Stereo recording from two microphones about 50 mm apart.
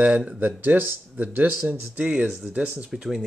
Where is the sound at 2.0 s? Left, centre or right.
Right.